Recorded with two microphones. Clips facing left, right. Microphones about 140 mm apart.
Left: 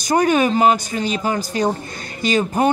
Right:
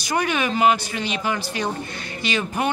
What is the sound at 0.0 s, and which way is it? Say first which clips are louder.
Speech: left 7 dB; 40° left (ahead or behind).